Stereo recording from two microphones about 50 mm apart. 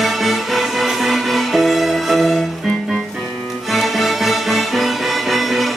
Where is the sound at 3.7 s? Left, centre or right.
Centre.